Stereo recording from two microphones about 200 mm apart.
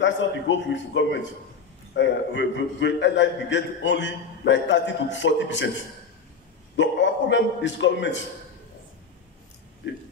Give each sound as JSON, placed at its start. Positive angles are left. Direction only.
{"t": 0.0, "sound": "a man's voice", "side_deg": 65}
{"t": 6.8, "sound": "a man's voice", "side_deg": 65}